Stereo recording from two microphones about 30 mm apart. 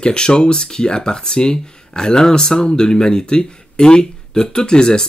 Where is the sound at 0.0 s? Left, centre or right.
Left.